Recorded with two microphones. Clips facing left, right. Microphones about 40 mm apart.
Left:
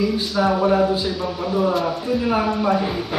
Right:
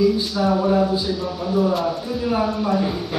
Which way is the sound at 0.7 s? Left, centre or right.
Left.